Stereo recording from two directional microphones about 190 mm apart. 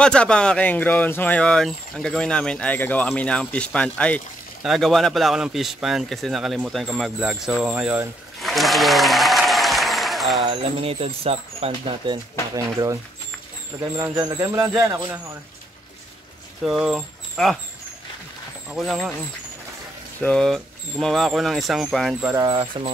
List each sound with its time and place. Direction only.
0.0 s speech: 5° left (ahead or behind)
10.4 s speech: 30° right (ahead or behind)
12.5 s a man's voice: 15° right (ahead or behind)
16.6 s speech: centre (ahead or behind)
18.7 s speech: centre (ahead or behind)
20.2 s speech: 5° left (ahead or behind)
22.3 s speech: 20° right (ahead or behind)